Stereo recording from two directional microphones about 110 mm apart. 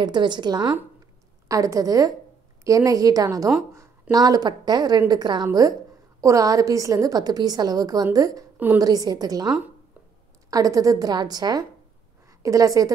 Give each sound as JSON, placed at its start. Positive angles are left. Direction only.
{"t": 0.0, "sound": "speech", "side_deg": -45}
{"t": 1.5, "sound": "a woman's voice", "side_deg": -30}
{"t": 10.5, "sound": "a woman's voice", "side_deg": -35}